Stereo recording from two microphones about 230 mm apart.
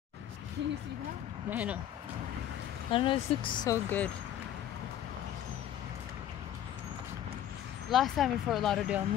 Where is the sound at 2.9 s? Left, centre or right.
Left.